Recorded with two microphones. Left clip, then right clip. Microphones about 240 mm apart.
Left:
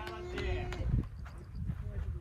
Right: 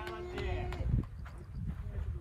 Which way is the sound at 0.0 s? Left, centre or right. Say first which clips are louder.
Even; right.